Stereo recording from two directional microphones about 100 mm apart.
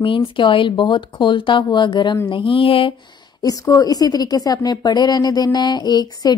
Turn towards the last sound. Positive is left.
turn(degrees=45)  # may be behind; listen again after turning